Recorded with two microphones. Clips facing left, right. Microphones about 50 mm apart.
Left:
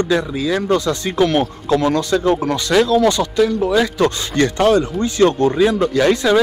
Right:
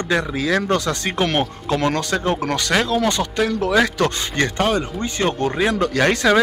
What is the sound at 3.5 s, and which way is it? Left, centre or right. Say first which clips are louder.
Speech: left 3 dB; right.